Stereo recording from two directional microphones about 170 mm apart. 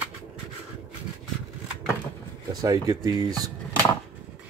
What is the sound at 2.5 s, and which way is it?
Speech, 20° right (ahead or behind).